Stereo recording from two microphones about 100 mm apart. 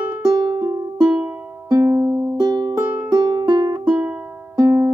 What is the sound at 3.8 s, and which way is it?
Music, 10° right (ahead or behind).